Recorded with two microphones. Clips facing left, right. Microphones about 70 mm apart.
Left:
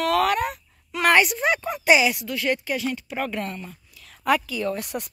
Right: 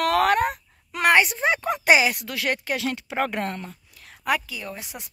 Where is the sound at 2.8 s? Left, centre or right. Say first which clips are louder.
Right 2 dB; right.